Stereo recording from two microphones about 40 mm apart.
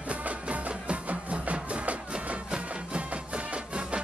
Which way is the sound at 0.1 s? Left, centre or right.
Right.